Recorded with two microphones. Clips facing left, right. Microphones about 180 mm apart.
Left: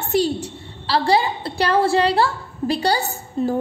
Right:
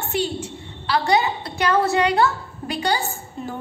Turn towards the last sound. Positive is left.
turn(degrees=40)  # may be behind; listen again after turning